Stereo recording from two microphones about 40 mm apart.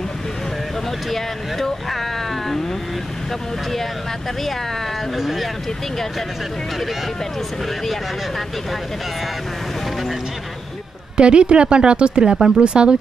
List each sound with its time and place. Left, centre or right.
1.1 s speech: centre
5.1 s speech: centre
11.1 s speech: right